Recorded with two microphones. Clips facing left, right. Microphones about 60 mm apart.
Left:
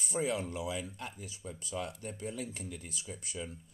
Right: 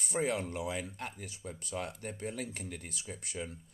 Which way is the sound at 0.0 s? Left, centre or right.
Right.